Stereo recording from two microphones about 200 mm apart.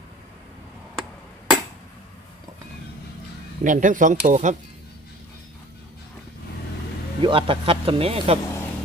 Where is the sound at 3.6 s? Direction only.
40° right (ahead or behind).